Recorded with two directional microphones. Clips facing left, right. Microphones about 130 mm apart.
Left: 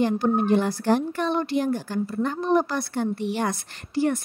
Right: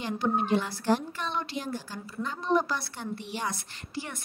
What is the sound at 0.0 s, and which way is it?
A woman's voice, 50° left (ahead or behind).